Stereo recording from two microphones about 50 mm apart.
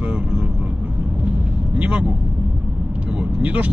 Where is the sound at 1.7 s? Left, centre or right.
Right.